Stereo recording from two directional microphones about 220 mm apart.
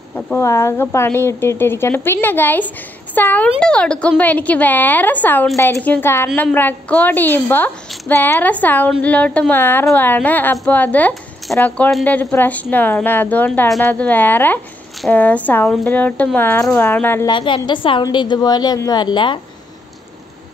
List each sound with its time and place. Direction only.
0.1 s a woman's voice: 10° left (ahead or behind)
17.3 s a woman's voice: 20° left (ahead or behind)